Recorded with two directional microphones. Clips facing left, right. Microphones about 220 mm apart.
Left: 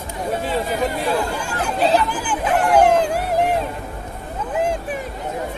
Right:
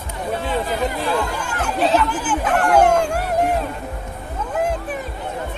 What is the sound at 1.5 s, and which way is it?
Chatter, 35° left (ahead or behind).